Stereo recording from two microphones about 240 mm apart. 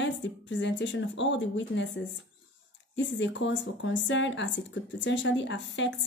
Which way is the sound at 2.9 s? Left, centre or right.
Left.